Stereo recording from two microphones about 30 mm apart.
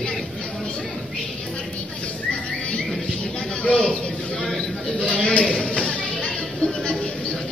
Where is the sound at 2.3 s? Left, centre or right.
Left.